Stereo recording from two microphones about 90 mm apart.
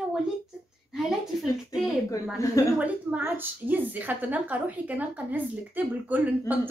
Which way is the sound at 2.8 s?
15° right (ahead or behind).